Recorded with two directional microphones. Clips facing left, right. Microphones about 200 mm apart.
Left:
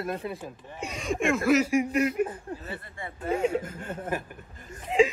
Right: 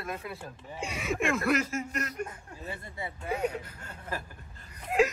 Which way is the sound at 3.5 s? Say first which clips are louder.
Left 10 dB; 45° left (ahead or behind).